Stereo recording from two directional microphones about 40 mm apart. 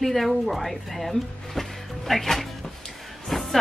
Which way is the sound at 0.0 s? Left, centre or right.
Centre.